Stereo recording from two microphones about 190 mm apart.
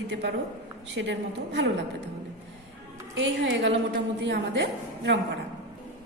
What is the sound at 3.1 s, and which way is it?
A woman's voice, 70° right (ahead or behind).